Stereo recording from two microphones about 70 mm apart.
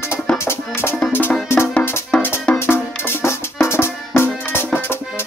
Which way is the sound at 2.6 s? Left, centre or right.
Left.